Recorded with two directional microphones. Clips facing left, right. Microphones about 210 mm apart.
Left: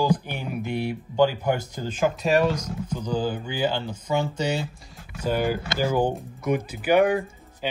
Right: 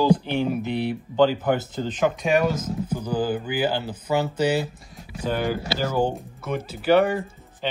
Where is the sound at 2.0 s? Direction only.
Centre (ahead or behind).